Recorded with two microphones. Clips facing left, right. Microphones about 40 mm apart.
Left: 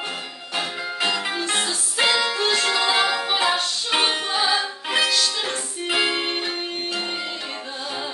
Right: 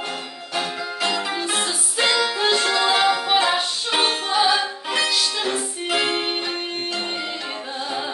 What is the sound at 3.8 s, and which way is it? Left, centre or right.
Music, centre.